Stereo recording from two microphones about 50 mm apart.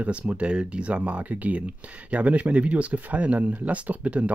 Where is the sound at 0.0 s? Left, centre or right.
Right.